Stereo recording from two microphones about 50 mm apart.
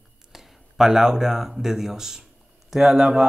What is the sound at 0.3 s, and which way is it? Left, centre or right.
Speech, centre.